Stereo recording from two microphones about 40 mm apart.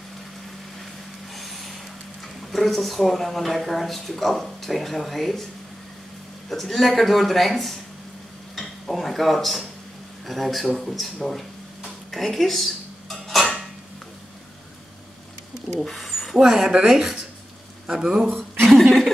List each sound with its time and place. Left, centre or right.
1.3 s vehicle: centre
2.2 s speech: centre
6.5 s speech: centre
13.1 s dishes: centre
15.8 s speech: centre
16.1 s a sound: centre
16.3 s speech: centre
18.6 s a sound: centre